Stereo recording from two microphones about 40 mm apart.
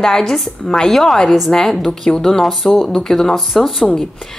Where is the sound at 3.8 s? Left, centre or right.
Centre.